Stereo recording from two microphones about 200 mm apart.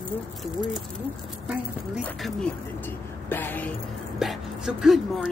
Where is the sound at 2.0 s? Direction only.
5° left (ahead or behind).